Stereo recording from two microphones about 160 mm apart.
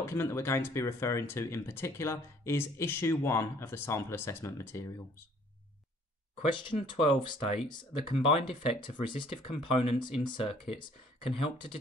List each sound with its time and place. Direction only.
0.0 s speech: 15° left (ahead or behind)
6.4 s speech: 30° left (ahead or behind)